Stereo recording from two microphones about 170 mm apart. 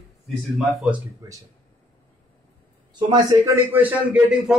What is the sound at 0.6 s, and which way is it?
Speech, 5° right (ahead or behind).